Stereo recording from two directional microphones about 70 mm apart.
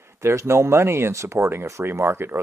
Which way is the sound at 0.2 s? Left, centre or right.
Right.